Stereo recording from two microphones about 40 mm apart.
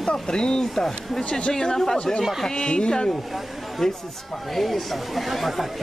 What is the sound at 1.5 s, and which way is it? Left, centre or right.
Speech, centre.